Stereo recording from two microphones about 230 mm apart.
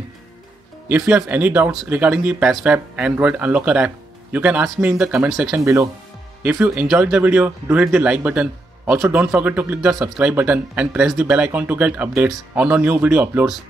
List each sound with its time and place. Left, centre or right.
0.8 s speech: centre